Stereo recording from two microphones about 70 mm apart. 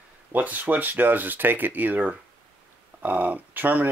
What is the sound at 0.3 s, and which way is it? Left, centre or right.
Speech, right.